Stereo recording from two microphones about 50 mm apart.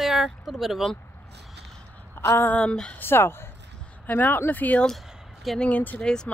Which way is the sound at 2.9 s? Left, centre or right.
Left.